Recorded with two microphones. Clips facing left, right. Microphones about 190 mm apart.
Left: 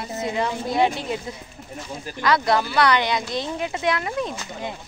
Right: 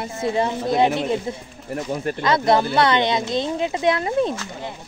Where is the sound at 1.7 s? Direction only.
75° right (ahead or behind).